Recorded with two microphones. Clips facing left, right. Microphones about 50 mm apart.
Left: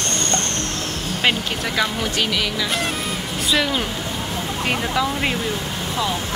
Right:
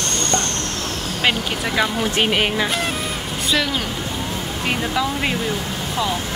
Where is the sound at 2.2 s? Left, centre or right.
Right.